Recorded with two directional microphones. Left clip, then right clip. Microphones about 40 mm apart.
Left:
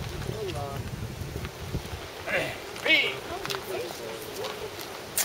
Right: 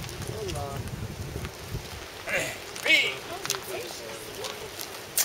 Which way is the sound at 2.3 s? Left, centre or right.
Right.